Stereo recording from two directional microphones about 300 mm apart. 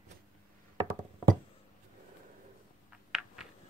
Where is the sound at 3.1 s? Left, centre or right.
Centre.